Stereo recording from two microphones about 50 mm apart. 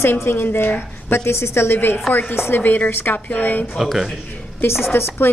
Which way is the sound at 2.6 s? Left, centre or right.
Left.